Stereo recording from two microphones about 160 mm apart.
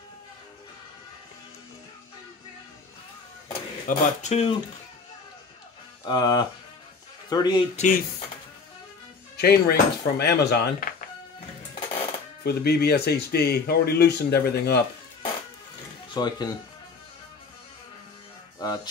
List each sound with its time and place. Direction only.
3.8 s speech: 45° left (ahead or behind)
6.0 s speech: 25° left (ahead or behind)
7.7 s speech: 50° left (ahead or behind)
9.4 s speech: 90° left
12.4 s speech: 90° left
16.1 s speech: 25° left (ahead or behind)
18.6 s music: 25° left (ahead or behind)